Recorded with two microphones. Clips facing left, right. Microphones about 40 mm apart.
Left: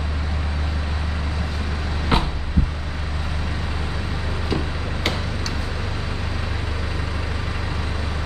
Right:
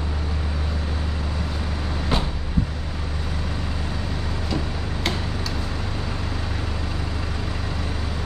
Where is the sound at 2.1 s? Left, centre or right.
Left.